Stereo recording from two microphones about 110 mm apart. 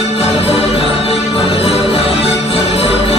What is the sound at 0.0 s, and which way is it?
Music, 65° left (ahead or behind).